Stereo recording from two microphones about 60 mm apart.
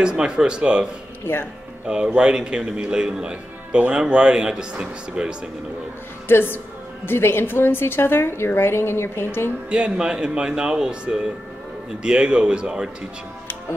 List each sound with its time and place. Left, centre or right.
0.0 s speech: centre
1.2 s a woman's voice: left
1.9 s speech: centre
6.2 s a woman's voice: left
9.7 s speech: centre